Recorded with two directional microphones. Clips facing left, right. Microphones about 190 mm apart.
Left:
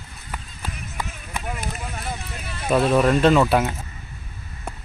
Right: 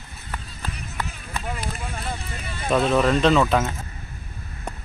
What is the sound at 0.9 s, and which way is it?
Run, 10° left (ahead or behind).